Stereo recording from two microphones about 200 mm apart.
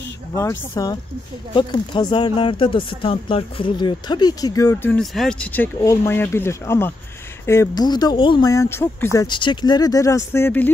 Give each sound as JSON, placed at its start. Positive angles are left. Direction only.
{"t": 0.4, "sound": "speech", "side_deg": 15}
{"t": 4.9, "sound": "speech", "side_deg": 0}